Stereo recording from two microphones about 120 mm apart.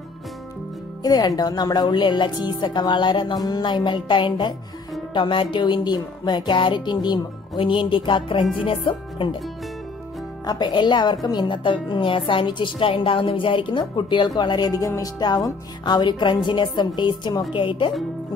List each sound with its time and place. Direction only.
1.0 s a woman's voice: 35° left (ahead or behind)
10.4 s a woman's voice: 35° left (ahead or behind)